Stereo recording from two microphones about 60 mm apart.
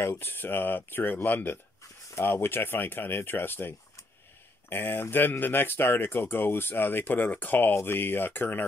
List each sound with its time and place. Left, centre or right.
0.2 s speech: left